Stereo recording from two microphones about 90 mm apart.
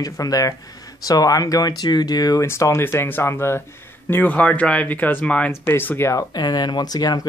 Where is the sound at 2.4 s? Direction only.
30° left (ahead or behind); by 5.5 s 15° left (ahead or behind).